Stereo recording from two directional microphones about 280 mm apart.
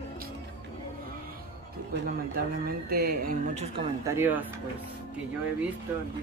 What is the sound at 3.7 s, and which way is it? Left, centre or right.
Speech, centre.